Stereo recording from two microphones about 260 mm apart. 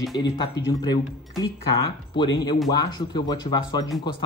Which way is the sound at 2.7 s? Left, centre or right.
Centre.